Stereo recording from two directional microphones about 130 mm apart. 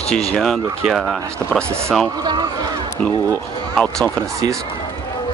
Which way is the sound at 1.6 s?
20° right (ahead or behind).